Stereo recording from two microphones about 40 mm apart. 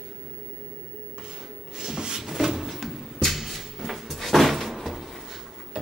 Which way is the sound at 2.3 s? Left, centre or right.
Centre.